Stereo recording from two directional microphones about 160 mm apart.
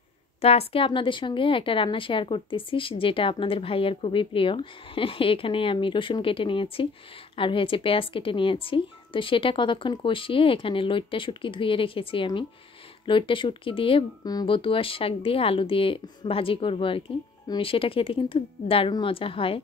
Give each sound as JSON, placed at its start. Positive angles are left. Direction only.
{"t": 0.4, "sound": "speech", "side_deg": 40}